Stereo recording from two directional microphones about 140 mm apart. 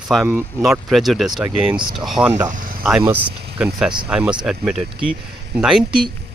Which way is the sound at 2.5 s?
85° right.